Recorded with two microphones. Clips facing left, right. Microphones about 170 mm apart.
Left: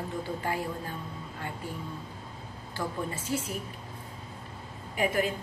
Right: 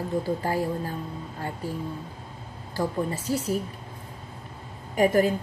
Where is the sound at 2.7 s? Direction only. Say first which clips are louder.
Right 6 dB; 40° right (ahead or behind).